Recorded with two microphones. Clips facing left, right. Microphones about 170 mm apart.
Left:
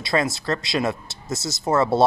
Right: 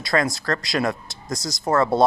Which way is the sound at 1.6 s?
20° left (ahead or behind).